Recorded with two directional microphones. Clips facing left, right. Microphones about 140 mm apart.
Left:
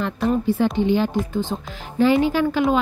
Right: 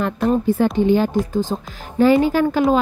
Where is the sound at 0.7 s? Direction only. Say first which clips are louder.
Right 3 dB; 45° right (ahead or behind).